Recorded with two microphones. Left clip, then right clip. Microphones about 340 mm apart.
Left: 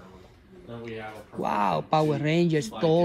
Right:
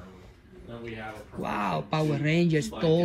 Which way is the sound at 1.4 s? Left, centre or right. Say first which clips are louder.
Left 4 dB; centre.